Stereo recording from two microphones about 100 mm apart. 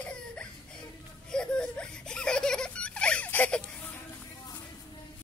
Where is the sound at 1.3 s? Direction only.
10° left (ahead or behind).